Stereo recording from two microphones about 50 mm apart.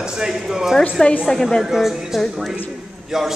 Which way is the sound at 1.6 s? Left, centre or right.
Centre.